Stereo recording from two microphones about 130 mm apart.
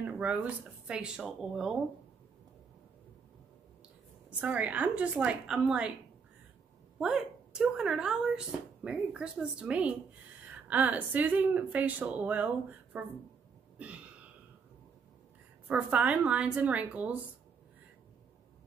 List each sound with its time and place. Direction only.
0.0 s speech: 10° right (ahead or behind)
4.4 s speech: 10° right (ahead or behind)
7.0 s speech: 5° right (ahead or behind)
13.7 s a sound: 10° right (ahead or behind)
15.7 s speech: 10° right (ahead or behind)